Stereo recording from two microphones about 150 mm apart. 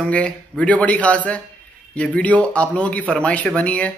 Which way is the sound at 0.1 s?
10° left (ahead or behind).